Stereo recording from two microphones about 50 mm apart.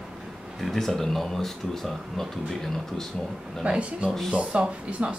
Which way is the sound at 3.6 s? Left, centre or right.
Centre.